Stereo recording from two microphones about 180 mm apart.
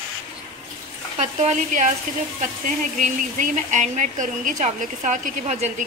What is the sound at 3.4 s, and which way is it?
A woman's voice, 40° right (ahead or behind).